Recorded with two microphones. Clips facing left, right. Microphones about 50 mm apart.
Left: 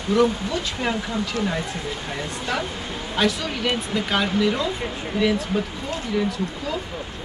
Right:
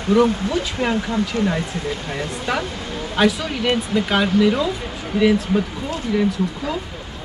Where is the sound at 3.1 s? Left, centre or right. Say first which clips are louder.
Right 4 dB; centre.